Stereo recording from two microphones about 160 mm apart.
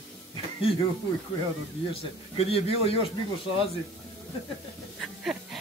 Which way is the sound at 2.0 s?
40° left (ahead or behind).